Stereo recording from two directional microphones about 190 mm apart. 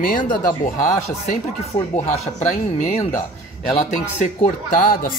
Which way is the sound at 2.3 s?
35° left (ahead or behind).